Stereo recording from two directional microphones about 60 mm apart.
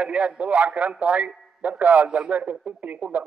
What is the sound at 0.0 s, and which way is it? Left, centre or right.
A man's voice, centre.